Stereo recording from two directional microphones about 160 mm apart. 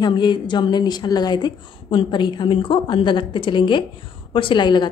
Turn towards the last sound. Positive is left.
turn(degrees=30)  # may be behind; listen again after turning